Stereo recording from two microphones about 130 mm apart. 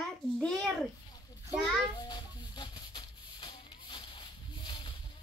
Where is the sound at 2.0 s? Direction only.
30° left (ahead or behind).